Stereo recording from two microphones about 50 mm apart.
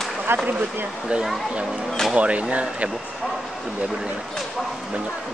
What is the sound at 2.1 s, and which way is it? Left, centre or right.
Speech, right.